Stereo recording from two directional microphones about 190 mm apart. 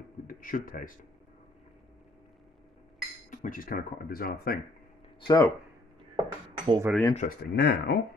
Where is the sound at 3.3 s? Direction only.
45° left (ahead or behind).